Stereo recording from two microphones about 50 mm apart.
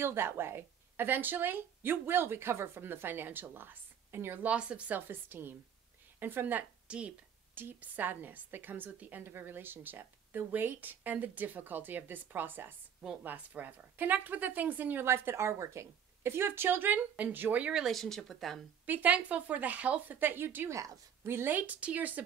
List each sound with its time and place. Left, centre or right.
0.0 s speech: right
4.4 s speech: right
4.9 s speech: right
6.9 s speech: right
7.5 s a woman's voice: right
15.0 s a woman's voice: right
17.8 s speech: centre
18.9 s a woman's voice: right
20.2 s speech: right
21.5 s a woman's voice: right